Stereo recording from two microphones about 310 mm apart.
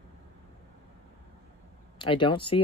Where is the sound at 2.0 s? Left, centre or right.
Centre.